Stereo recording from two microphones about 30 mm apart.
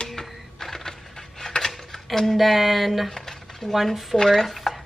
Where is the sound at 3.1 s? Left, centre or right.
Centre.